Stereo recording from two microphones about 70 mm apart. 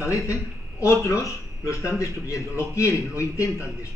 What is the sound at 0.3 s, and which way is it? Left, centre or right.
A man's voice, left.